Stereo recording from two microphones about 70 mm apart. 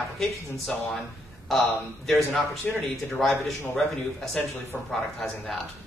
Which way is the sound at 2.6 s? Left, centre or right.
Left.